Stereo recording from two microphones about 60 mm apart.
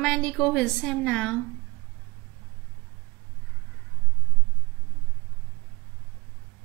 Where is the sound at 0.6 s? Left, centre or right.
Centre.